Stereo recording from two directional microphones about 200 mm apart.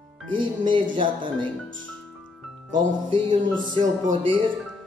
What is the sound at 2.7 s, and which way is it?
Music, 25° right (ahead or behind).